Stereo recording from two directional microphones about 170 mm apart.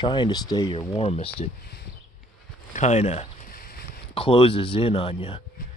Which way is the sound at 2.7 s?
45° left (ahead or behind).